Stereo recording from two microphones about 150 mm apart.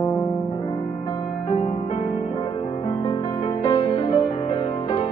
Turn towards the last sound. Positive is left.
turn(degrees=35)  # may be behind; listen again after turning